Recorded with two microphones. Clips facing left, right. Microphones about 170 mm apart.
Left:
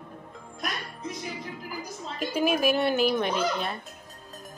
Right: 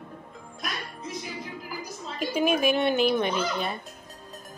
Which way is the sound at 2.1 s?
5° left (ahead or behind).